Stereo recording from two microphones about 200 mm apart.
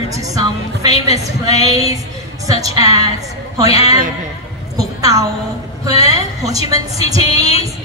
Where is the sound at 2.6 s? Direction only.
15° right (ahead or behind).